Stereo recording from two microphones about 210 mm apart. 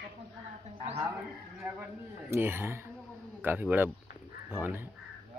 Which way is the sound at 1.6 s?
10° right (ahead or behind).